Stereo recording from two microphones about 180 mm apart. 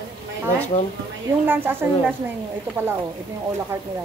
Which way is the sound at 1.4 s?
10° right (ahead or behind).